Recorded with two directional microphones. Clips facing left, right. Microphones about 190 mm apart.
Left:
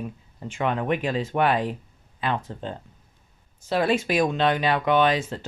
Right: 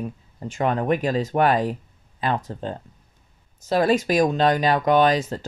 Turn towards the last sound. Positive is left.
turn(degrees=-40)  # may be behind; listen again after turning